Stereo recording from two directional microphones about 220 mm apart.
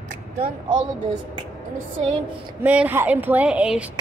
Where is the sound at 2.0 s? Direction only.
25° right (ahead or behind).